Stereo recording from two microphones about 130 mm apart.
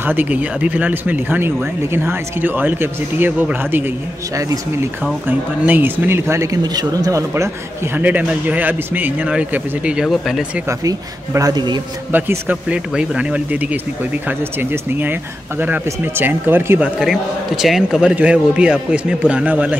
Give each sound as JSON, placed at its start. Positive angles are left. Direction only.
{"t": 0.0, "sound": "speech", "side_deg": -15}
{"t": 5.6, "sound": "speech", "side_deg": -15}
{"t": 10.7, "sound": "speech", "side_deg": -25}
{"t": 12.1, "sound": "speech", "side_deg": -15}
{"t": 17.0, "sound": "speech", "side_deg": -5}